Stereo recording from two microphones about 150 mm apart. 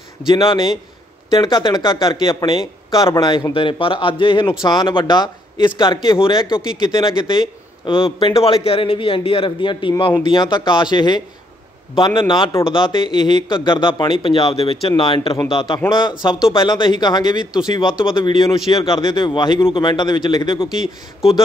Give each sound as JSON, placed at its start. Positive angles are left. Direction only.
{"t": 0.3, "sound": "a man's voice", "side_deg": 35}
{"t": 20.6, "sound": "speech", "side_deg": -5}